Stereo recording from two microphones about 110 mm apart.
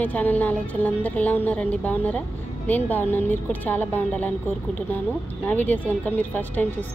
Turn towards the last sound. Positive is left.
turn(degrees=15)  # may be behind; listen again after turning